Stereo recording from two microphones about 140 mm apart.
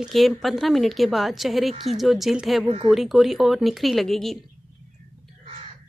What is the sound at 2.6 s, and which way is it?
Speech, 35° right (ahead or behind).